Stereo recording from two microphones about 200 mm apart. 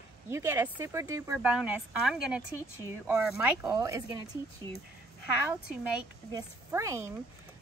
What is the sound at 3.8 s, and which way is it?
Speech, 20° right (ahead or behind).